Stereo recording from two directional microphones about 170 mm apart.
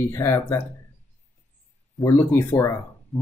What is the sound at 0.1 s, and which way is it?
Speech, 15° left (ahead or behind).